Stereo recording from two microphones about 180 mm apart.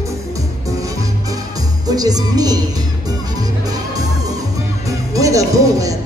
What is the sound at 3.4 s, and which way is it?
Music, 20° right (ahead or behind).